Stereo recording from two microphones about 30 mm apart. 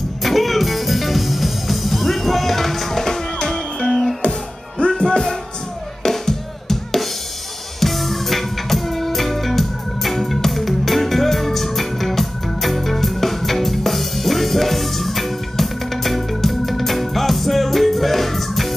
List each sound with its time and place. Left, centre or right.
0.2 s music: centre
4.7 s music: left
6.0 s music: centre